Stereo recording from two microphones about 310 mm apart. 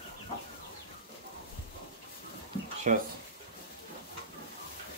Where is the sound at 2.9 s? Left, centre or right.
Right.